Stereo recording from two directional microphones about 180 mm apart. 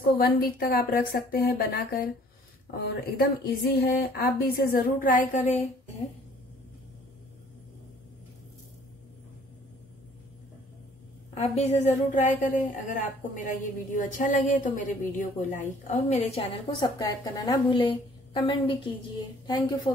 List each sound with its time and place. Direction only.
0.0 s a woman's voice: 55° left (ahead or behind)
11.3 s a woman's voice: 35° left (ahead or behind)
16.8 s a woman's voice: 20° left (ahead or behind)